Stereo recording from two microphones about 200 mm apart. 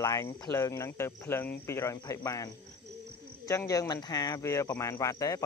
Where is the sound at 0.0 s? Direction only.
15° left (ahead or behind).